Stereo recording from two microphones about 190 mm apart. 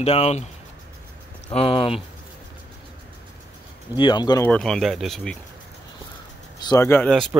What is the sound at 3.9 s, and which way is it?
Speech, 25° left (ahead or behind).